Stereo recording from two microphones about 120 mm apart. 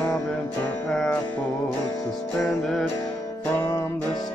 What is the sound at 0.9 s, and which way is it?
Music, 5° left (ahead or behind).